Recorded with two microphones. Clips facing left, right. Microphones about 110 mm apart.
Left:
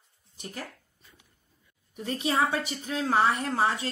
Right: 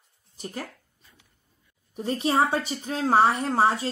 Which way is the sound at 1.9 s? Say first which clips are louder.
Right 4 dB; 35° right (ahead or behind).